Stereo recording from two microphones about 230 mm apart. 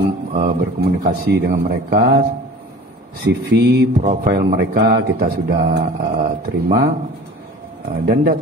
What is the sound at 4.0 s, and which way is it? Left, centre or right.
Speech, right.